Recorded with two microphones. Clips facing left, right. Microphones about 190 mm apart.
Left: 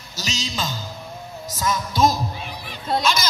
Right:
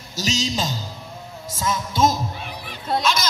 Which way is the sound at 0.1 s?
40° right (ahead or behind).